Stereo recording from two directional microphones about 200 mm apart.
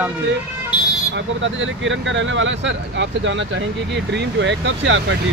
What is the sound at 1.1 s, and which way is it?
Speech, 70° right (ahead or behind).